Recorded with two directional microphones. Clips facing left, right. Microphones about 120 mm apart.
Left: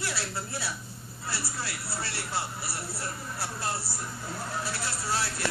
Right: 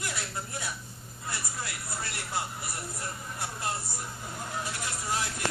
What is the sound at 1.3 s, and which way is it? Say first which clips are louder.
Speech: left 2 dB; 20° right (ahead or behind).